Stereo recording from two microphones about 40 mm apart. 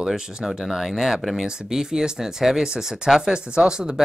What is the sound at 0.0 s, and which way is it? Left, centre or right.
Speech, centre.